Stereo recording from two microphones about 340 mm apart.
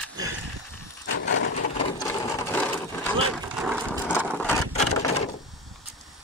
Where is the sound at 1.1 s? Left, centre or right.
Left.